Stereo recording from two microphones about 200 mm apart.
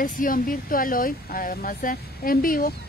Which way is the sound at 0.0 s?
45° left (ahead or behind).